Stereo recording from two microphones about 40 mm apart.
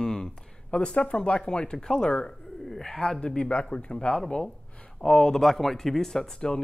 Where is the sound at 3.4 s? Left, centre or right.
Left.